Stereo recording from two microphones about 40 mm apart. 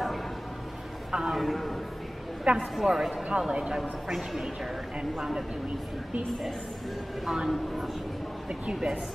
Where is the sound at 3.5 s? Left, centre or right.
Right.